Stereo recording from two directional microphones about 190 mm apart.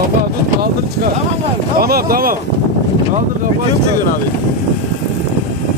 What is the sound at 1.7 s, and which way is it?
Speech, 50° right (ahead or behind).